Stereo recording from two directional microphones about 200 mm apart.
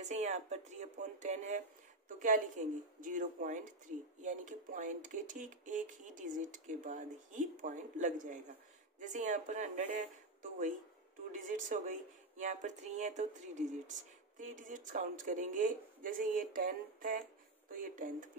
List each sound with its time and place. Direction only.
0.0 s speech: 35° right (ahead or behind)
11.3 s speech: 40° right (ahead or behind)